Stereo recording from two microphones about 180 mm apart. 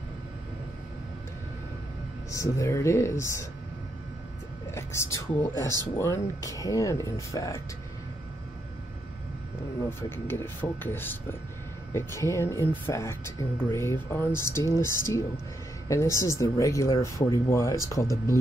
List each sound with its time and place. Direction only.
2.3 s speech: 15° left (ahead or behind)
4.6 s speech: 15° left (ahead or behind)
9.8 s speech: 10° left (ahead or behind)